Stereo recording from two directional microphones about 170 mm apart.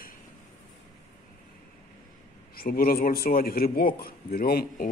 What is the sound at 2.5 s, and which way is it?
A man's voice, 60° left (ahead or behind).